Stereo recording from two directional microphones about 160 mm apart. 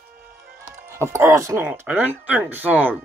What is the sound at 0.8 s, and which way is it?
Speech, 15° right (ahead or behind).